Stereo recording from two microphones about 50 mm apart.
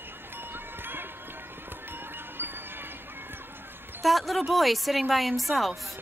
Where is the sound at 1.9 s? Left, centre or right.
Right.